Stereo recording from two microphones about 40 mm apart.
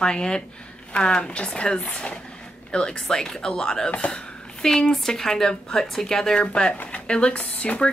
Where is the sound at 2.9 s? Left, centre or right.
Centre.